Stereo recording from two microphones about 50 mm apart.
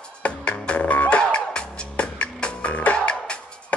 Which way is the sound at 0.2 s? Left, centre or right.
Left.